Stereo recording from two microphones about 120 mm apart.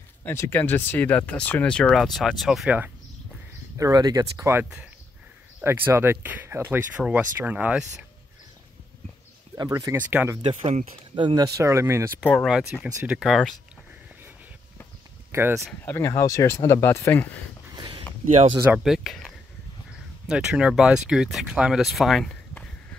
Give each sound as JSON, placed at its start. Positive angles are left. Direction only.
{"t": 0.2, "sound": "speech", "side_deg": 20}
{"t": 3.7, "sound": "speech", "side_deg": -30}
{"t": 9.6, "sound": "speech", "side_deg": -30}
{"t": 9.9, "sound": "speech", "side_deg": -15}
{"t": 10.6, "sound": "speech", "side_deg": -70}
{"t": 11.1, "sound": "speech", "side_deg": -35}
{"t": 12.8, "sound": "speech", "side_deg": -10}
{"t": 15.3, "sound": "speech", "side_deg": -20}
{"t": 15.8, "sound": "speech", "side_deg": 20}
{"t": 17.7, "sound": "a sound", "side_deg": -45}
{"t": 18.3, "sound": "speech", "side_deg": -50}
{"t": 18.8, "sound": "speech", "side_deg": 0}